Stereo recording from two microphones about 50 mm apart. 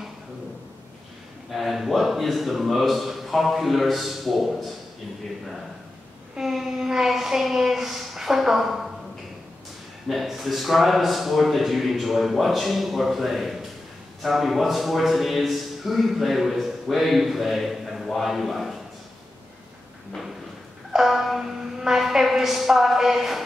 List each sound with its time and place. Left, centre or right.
1.5 s a man's voice: centre
6.3 s a woman's voice: centre
10.0 s a man's voice: centre
20.9 s a sound: centre